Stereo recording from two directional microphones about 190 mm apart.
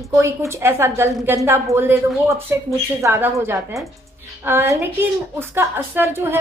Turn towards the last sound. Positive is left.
turn(degrees=-10)  # may be behind; listen again after turning